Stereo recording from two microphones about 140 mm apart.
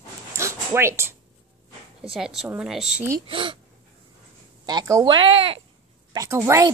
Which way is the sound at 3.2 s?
40° right (ahead or behind).